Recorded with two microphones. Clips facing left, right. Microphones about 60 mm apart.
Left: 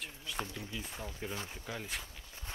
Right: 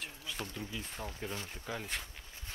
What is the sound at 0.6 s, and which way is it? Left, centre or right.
Speech, centre.